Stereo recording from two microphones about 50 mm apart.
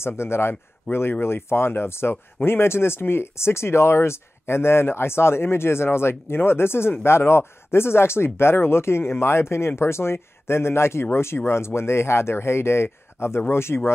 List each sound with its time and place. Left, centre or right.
0.0 s speech: left
0.9 s speech: left
1.2 s speech: left